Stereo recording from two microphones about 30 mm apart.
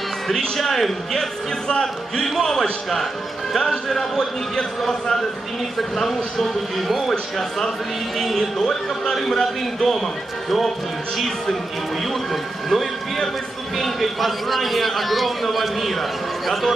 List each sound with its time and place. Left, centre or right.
0.6 s a man's voice: centre
1.7 s a man's voice: left; by 7.6 s centre
8.4 s speech: left
9.1 s a man's voice: centre
12.1 s a man's voice: centre